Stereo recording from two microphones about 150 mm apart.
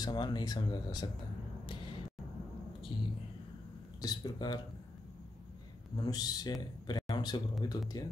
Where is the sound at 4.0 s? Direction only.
25° left (ahead or behind).